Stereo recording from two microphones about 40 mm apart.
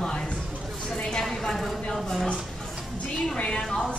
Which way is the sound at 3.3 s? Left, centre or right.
Left.